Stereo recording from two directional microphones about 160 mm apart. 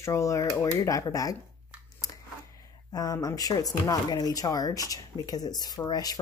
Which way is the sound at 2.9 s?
25° left (ahead or behind).